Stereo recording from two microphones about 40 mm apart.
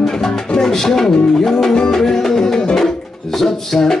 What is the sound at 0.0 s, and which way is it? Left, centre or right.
Music, centre.